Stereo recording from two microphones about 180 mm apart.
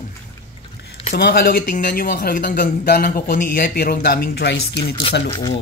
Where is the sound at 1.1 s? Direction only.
60° left (ahead or behind).